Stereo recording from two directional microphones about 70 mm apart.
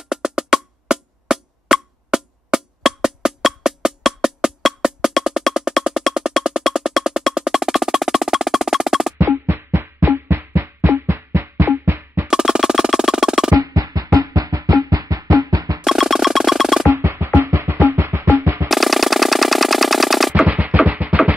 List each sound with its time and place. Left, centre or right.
0.1 s music: centre
7.3 s percussion: centre
9.3 s music: right
12.3 s music: centre
13.6 s music: right
15.8 s music: centre
16.9 s music: right
18.7 s a sound: centre
20.4 s music: right